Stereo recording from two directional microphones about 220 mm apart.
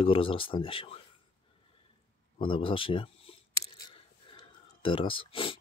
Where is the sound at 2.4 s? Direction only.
25° left (ahead or behind).